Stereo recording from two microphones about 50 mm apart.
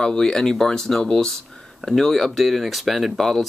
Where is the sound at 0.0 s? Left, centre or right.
Centre.